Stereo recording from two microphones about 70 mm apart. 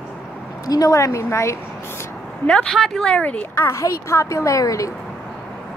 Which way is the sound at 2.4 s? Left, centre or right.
Centre.